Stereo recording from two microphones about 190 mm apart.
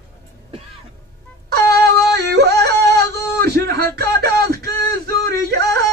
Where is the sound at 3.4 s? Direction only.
55° right (ahead or behind).